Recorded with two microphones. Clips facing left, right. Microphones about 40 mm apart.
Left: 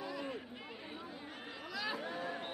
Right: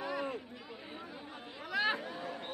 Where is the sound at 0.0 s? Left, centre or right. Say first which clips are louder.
Right 5 dB; right.